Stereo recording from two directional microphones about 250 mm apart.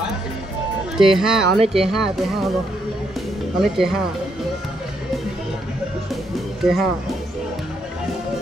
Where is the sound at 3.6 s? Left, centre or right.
Centre.